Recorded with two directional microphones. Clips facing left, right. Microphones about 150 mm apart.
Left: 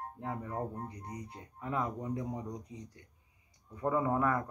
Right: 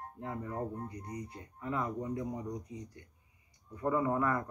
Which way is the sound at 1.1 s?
15° left (ahead or behind).